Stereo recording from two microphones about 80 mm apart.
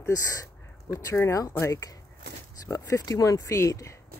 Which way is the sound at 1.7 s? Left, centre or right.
Left.